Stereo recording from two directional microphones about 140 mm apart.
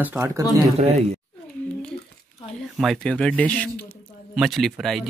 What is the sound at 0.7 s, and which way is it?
Speech, 50° right (ahead or behind).